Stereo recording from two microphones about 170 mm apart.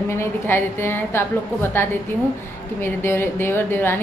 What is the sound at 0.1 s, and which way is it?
A woman's voice, 15° left (ahead or behind).